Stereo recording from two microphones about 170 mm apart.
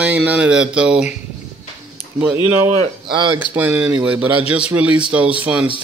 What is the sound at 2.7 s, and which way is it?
Speech, 35° right (ahead or behind).